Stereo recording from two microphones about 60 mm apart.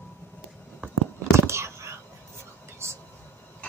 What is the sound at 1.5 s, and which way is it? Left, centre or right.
Whispering, right.